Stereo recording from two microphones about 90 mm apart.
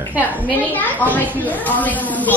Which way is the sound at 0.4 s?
20° left (ahead or behind).